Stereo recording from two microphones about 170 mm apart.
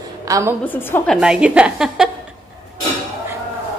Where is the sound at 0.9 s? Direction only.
5° left (ahead or behind).